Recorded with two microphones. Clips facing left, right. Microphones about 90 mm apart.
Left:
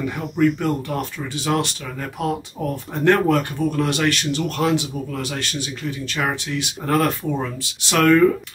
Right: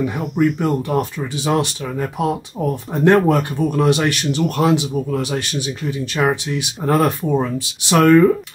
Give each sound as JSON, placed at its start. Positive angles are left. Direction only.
{"t": 0.0, "sound": "speech", "side_deg": -15}